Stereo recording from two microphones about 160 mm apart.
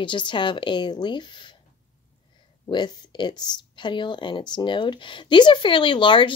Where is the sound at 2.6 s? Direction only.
25° left (ahead or behind).